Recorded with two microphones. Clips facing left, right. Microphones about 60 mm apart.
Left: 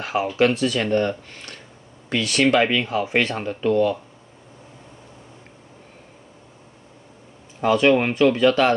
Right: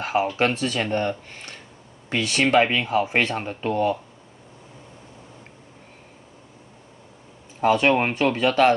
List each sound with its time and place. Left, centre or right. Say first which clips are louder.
0.0 s speech: left 2 dB; right
7.6 s speech: left 2 dB; right